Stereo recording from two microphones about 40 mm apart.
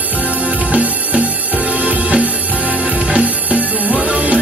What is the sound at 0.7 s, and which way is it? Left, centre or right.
Music, right.